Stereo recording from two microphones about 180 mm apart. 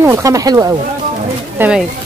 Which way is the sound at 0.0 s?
15° right (ahead or behind).